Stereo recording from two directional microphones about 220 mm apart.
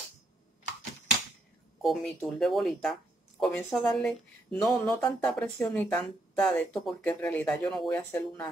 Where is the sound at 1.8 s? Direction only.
Centre (ahead or behind).